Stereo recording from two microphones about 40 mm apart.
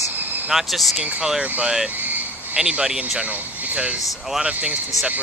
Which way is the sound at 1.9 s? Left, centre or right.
Right.